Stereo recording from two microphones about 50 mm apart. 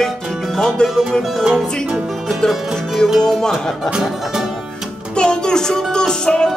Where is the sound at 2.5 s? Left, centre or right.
Centre.